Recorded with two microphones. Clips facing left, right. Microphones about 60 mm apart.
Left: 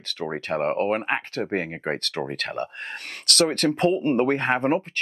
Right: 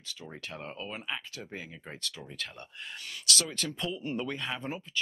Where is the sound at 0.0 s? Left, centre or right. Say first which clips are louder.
Left 14 dB; left.